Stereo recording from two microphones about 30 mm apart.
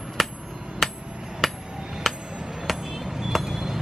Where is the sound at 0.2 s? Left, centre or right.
Centre.